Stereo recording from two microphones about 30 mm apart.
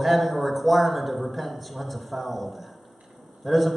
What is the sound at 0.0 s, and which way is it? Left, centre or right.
A man's voice, centre.